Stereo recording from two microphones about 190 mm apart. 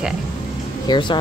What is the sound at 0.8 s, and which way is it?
Speech, 25° left (ahead or behind).